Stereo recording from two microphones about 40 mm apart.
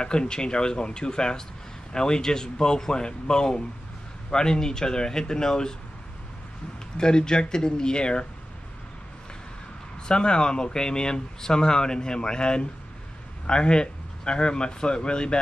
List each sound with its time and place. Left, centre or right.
0.0 s speech: left
7.0 s speech: centre
10.0 s speech: left